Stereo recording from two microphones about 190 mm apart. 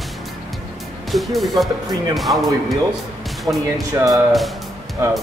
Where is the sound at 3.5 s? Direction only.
10° right (ahead or behind).